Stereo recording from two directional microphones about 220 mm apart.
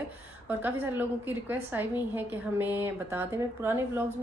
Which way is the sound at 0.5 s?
10° right (ahead or behind).